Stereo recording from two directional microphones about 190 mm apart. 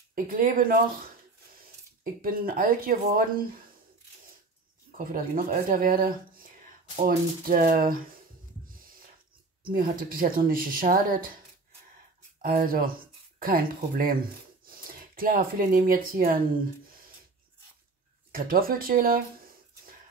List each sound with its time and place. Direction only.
0.1 s speech: 45° right (ahead or behind)
2.2 s speech: 50° right (ahead or behind)
4.9 s speech: 45° right (ahead or behind)
9.6 s speech: 45° right (ahead or behind)
12.4 s speech: 50° right (ahead or behind)
18.3 s speech: 50° right (ahead or behind)